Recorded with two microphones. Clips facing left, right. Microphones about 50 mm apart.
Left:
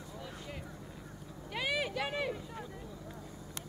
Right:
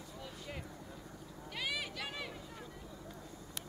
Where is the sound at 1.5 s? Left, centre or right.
Centre.